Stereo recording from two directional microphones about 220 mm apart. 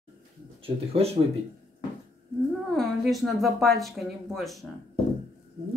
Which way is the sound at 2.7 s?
Centre (ahead or behind).